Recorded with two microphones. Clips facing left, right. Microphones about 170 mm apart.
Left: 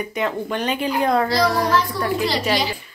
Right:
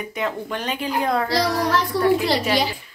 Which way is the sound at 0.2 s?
Centre (ahead or behind).